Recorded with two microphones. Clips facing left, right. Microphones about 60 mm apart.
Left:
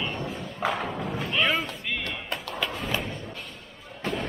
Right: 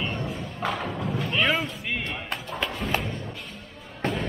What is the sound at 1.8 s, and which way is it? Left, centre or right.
Music, centre.